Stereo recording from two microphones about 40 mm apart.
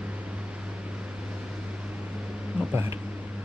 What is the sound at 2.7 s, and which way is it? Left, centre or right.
Speech, right.